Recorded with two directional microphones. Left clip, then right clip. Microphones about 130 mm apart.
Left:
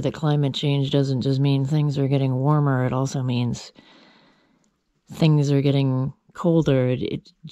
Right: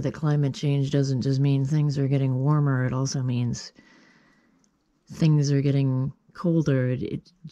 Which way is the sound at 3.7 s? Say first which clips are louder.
Left 4 dB; 45° left (ahead or behind).